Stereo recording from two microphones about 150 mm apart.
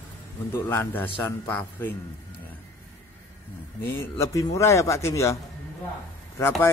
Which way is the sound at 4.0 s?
20° left (ahead or behind).